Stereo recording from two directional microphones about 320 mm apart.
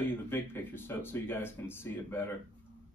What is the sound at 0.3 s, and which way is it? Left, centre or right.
Speech, centre.